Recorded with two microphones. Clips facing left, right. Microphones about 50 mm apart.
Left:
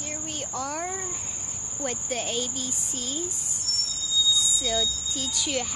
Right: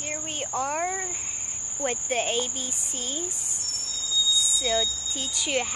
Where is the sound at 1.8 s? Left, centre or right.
Right.